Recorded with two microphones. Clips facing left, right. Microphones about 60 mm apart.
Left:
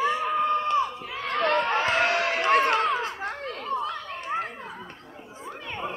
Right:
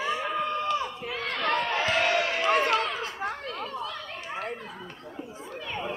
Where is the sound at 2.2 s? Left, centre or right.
Left.